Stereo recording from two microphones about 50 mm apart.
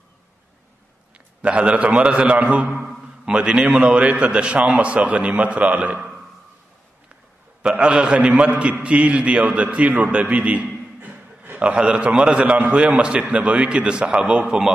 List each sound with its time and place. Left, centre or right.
1.1 s a man's voice: right
7.7 s a man's voice: centre
11.0 s a sound: right
11.5 s a man's voice: right